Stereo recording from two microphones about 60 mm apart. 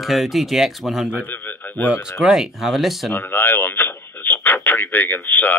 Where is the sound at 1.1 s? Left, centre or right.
Left.